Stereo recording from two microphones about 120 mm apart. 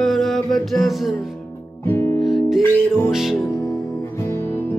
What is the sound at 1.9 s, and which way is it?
Music, 20° left (ahead or behind).